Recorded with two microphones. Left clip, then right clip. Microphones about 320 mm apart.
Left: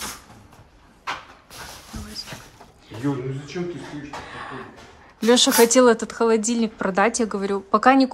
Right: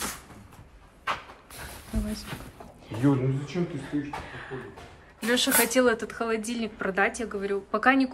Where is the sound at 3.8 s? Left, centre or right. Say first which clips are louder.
Right 1 dB; centre.